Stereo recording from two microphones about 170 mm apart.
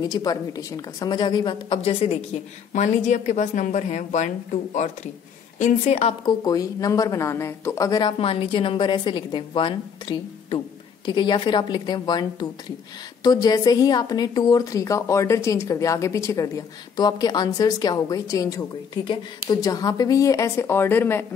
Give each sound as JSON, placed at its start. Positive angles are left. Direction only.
{"t": 0.0, "sound": "a woman's voice", "side_deg": 25}
{"t": 6.2, "sound": "a woman's voice", "side_deg": 20}